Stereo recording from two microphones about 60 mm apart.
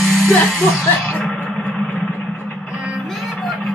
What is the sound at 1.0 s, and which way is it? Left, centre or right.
Vehicle, centre.